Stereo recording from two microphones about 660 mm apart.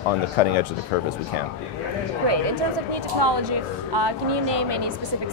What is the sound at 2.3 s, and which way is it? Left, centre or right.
Speech, right.